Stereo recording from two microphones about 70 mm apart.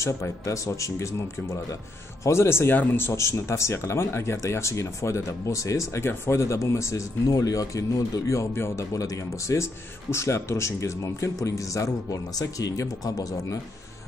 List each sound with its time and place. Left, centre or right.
0.0 s speech: left
8.3 s speech: left